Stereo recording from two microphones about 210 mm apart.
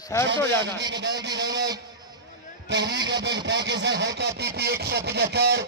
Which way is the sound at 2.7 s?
55° right (ahead or behind).